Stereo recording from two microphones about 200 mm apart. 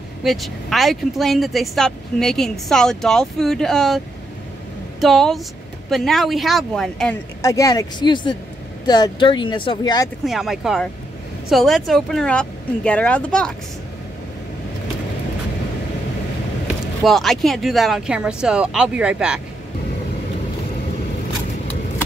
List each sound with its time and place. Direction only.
0.2 s speech: centre (ahead or behind)
5.0 s speech: centre (ahead or behind)
7.4 s speech: 15° left (ahead or behind)
10.2 s speech: centre (ahead or behind)
17.0 s speech: centre (ahead or behind)